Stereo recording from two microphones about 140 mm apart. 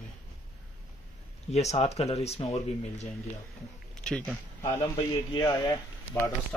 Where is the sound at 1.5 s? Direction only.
50° left (ahead or behind).